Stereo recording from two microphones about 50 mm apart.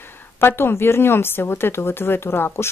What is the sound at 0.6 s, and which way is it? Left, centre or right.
Speech, left.